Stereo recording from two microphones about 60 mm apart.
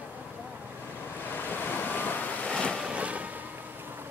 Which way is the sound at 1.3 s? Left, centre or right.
Left.